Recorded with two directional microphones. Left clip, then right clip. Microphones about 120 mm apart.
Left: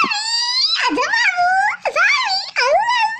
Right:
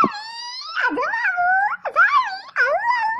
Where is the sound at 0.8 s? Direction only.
10° left (ahead or behind).